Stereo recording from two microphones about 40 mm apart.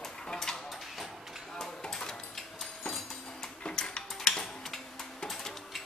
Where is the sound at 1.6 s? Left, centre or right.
Centre.